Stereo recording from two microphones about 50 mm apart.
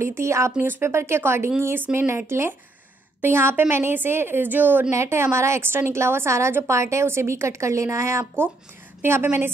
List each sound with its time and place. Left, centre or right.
0.0 s a woman's voice: right
0.6 s a woman's voice: right
0.8 s a woman's voice: right
4.9 s a woman's voice: right
9.0 s a woman's voice: right